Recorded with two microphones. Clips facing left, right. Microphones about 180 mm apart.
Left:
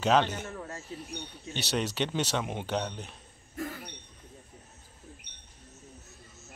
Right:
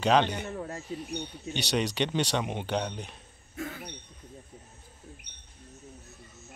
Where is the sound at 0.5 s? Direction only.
25° right (ahead or behind).